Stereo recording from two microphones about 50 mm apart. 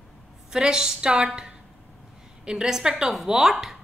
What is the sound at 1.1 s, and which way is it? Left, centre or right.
Speech, right.